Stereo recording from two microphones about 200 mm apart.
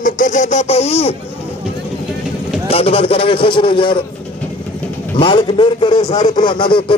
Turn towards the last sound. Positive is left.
turn(degrees=25)  # may be behind; listen again after turning